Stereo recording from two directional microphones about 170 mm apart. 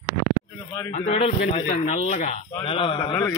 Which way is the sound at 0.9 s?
40° left (ahead or behind).